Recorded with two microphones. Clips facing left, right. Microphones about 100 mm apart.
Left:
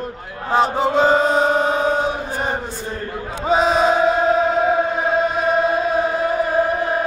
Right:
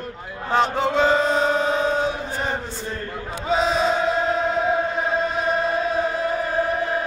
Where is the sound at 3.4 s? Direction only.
55° left (ahead or behind).